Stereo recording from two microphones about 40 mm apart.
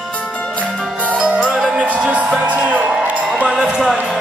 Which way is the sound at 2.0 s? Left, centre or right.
Right.